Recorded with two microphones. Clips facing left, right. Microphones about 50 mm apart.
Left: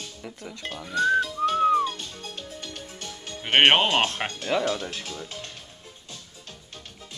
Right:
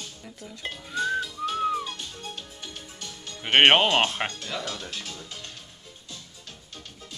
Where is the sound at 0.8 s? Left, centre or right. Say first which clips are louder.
Left 5 dB; centre.